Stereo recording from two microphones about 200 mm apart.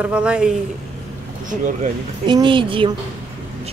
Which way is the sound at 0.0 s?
5° right (ahead or behind).